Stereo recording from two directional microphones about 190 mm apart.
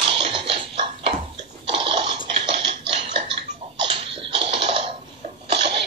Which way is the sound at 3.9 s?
30° right (ahead or behind).